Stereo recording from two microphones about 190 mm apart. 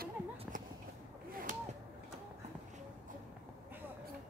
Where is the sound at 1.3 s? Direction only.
45° right (ahead or behind).